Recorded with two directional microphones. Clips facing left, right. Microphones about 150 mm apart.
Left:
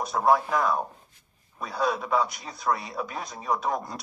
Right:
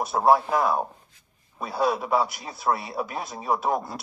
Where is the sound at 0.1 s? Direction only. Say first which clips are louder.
Right 2 dB; 30° right (ahead or behind).